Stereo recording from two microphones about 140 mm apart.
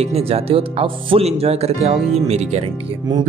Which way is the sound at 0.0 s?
45° right (ahead or behind).